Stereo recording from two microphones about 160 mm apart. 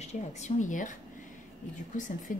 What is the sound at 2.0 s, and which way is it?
Speech, 55° left (ahead or behind).